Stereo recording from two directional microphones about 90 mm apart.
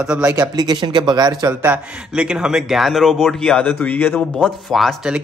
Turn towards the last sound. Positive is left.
turn(degrees=0)  # may be behind; listen again after turning